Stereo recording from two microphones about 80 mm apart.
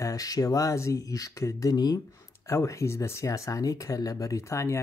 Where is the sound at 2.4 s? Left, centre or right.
Left.